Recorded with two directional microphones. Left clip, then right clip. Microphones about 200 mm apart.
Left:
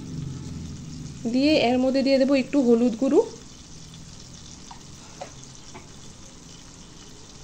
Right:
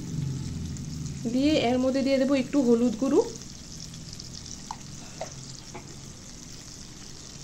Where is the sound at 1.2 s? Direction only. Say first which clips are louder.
Left 4 dB; 25° left (ahead or behind).